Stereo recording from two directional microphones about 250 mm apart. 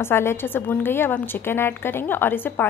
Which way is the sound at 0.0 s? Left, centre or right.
Centre.